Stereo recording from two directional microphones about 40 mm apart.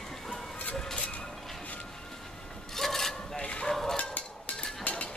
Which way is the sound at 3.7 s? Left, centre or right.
Centre.